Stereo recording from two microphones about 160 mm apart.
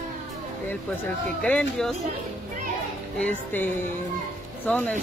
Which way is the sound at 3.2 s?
10° left (ahead or behind).